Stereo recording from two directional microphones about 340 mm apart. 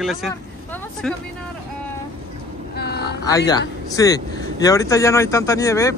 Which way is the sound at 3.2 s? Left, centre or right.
Centre.